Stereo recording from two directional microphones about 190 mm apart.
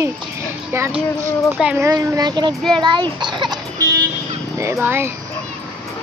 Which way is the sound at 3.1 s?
25° right (ahead or behind).